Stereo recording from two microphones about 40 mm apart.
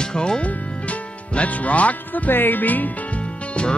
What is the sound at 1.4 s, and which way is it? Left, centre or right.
Speech, left.